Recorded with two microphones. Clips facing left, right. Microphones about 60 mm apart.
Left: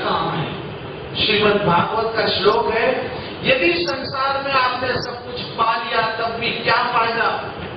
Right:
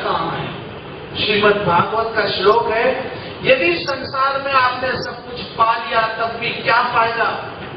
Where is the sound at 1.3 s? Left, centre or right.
Centre.